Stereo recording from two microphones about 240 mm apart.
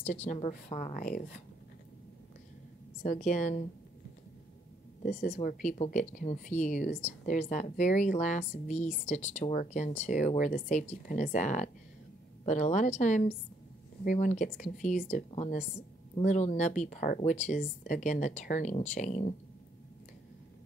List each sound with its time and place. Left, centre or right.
0.0 s a woman's voice: left
3.0 s speech: left
5.0 s speech: left